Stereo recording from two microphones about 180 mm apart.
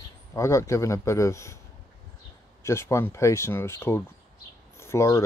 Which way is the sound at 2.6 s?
15° left (ahead or behind).